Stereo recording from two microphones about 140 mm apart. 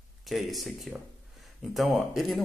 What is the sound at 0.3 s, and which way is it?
A man's voice, centre (ahead or behind).